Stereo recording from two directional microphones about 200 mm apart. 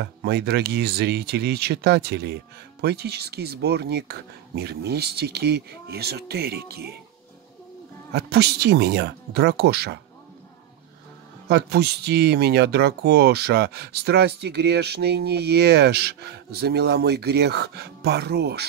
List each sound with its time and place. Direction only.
0.0 s speech: 55° right (ahead or behind)
8.1 s speech: 55° right (ahead or behind)
11.4 s speech: 55° right (ahead or behind)